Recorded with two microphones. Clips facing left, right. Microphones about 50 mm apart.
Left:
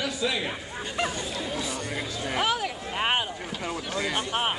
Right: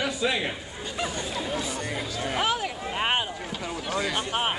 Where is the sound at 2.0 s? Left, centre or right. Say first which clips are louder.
Even; centre.